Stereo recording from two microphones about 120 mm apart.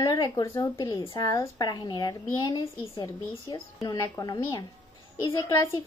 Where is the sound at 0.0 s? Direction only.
35° left (ahead or behind).